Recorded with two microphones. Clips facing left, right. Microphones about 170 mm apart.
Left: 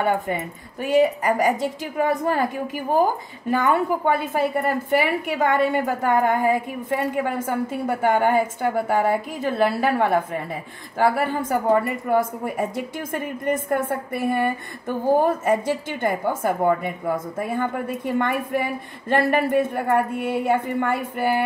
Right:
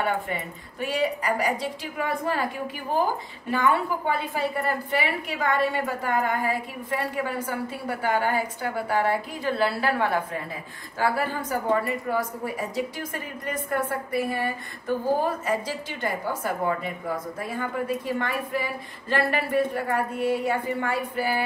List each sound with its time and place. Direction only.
0.0 s a woman's voice: 45° left (ahead or behind)
11.4 s a woman's voice: 55° left (ahead or behind)